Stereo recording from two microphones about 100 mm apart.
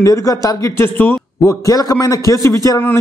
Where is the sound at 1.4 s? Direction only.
35° left (ahead or behind).